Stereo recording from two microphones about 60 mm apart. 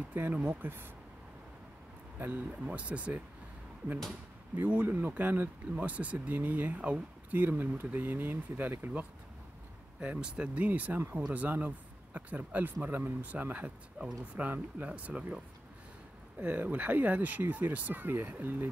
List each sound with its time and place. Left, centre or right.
0.1 s speech: right
2.1 s speech: right
4.6 s speech: right
4.8 s speech: right
9.9 s speech: centre
10.7 s speech: right
16.3 s speech: right